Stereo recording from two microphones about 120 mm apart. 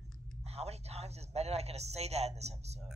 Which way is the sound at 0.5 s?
60° right (ahead or behind).